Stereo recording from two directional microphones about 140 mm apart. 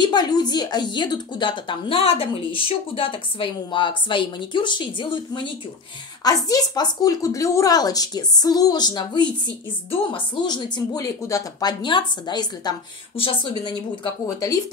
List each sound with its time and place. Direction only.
0.0 s a woman's voice: 30° left (ahead or behind)
14.2 s speech: 25° left (ahead or behind)